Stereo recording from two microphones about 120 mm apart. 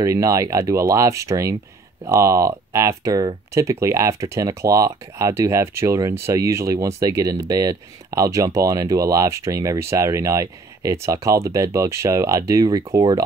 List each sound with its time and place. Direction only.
0.0 s speech: 25° right (ahead or behind)